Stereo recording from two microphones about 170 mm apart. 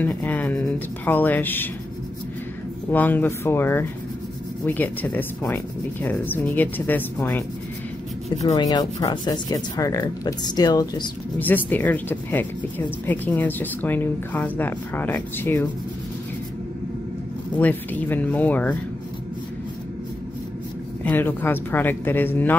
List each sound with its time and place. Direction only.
0.0 s speech: 10° left (ahead or behind)
2.9 s speech: 10° left (ahead or behind)
8.5 s speech: 25° left (ahead or behind)
11.3 s speech: 10° left (ahead or behind)
17.6 s speech: 10° left (ahead or behind)
21.0 s speech: 10° left (ahead or behind)